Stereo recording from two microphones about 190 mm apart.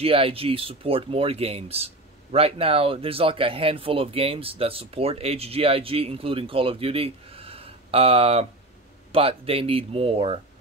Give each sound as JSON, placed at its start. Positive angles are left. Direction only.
{"t": 0.0, "sound": "speech", "side_deg": -30}